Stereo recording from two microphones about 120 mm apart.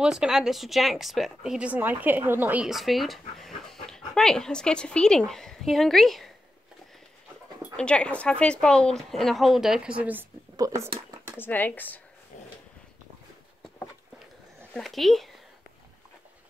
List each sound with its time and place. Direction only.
0.0 s a woman's voice: 5° right (ahead or behind)
2.6 s speech: centre (ahead or behind)
7.7 s a woman's voice: 10° left (ahead or behind); by 10.2 s 10° right (ahead or behind)
10.5 s a sound: 30° right (ahead or behind)
11.0 s dishes: 30° right (ahead or behind)
11.3 s speech: 15° left (ahead or behind)
14.8 s a woman's voice: centre (ahead or behind)